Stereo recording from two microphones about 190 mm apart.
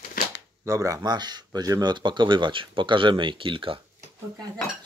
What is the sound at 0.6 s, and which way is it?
Speech, 15° right (ahead or behind).